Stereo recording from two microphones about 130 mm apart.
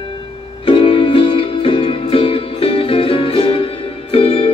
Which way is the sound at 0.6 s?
45° left (ahead or behind).